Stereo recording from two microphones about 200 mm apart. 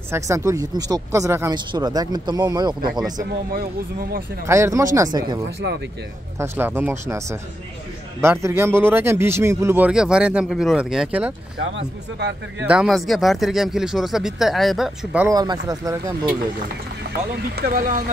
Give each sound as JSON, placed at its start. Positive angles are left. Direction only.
{"t": 0.1, "sound": "a man's voice", "side_deg": -15}
{"t": 3.5, "sound": "speech", "side_deg": -50}
{"t": 4.5, "sound": "a man's voice", "side_deg": -15}
{"t": 12.2, "sound": "speech", "side_deg": -60}
{"t": 12.6, "sound": "speech", "side_deg": -5}
{"t": 15.2, "sound": "speech", "side_deg": -20}
{"t": 17.3, "sound": "speech", "side_deg": -45}